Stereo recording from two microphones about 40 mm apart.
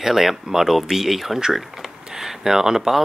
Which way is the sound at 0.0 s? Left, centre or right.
Centre.